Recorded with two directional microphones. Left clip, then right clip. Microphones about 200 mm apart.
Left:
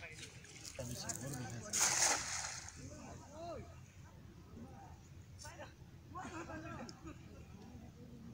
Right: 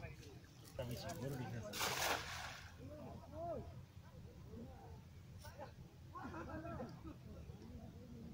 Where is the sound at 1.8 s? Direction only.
30° right (ahead or behind).